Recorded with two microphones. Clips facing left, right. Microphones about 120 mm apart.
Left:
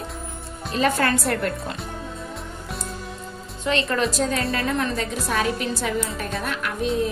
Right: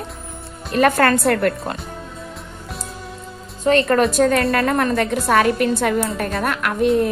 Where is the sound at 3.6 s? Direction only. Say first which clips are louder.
Right 7 dB; 55° right (ahead or behind).